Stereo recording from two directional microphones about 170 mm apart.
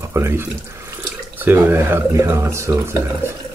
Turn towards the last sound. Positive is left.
turn(degrees=-15)  # may be behind; listen again after turning